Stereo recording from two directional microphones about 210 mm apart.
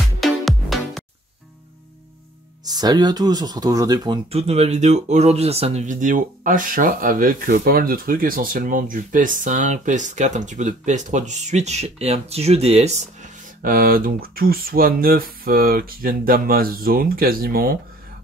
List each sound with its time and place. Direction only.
0.2 s music: centre (ahead or behind)
2.7 s speech: 20° right (ahead or behind); by 17.7 s 45° right (ahead or behind)